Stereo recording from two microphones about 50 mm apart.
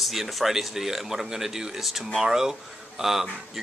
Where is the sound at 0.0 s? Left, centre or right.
Centre.